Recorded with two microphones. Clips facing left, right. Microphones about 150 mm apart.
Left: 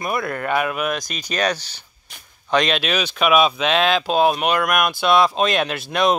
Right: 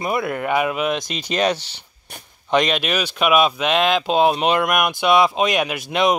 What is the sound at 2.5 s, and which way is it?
Speech, 10° right (ahead or behind).